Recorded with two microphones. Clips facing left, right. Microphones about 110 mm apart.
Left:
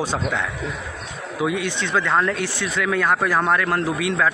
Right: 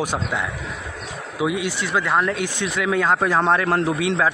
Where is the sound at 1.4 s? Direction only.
15° right (ahead or behind).